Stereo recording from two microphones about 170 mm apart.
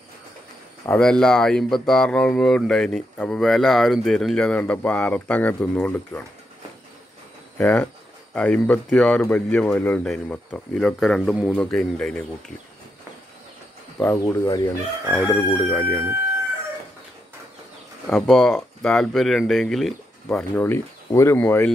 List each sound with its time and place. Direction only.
0.8 s speech: 5° left (ahead or behind)
7.5 s crowing: 10° left (ahead or behind)
8.4 s speech: 5° left (ahead or behind)
13.9 s speech: 20° left (ahead or behind)
15.1 s crowing: 10° left (ahead or behind)
18.1 s speech: 5° left (ahead or behind)